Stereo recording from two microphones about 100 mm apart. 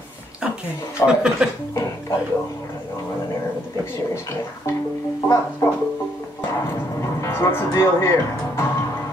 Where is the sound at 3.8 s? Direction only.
25° left (ahead or behind).